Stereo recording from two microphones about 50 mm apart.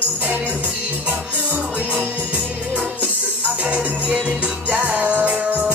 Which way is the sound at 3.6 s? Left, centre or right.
Right.